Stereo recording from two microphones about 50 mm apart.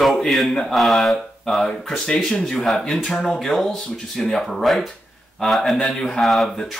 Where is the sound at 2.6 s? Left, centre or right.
Centre.